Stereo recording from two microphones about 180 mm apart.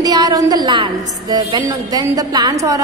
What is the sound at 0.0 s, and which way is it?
A woman's voice, 20° right (ahead or behind).